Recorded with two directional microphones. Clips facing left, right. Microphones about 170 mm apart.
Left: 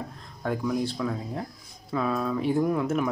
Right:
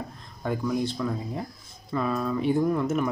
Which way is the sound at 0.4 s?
Centre (ahead or behind).